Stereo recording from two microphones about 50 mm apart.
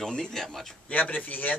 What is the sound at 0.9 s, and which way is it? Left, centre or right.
Speech, left.